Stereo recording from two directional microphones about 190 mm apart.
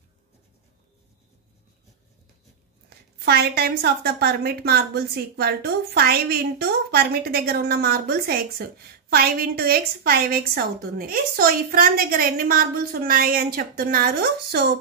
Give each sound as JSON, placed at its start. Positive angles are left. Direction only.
{"t": 3.3, "sound": "a woman's voice", "side_deg": -55}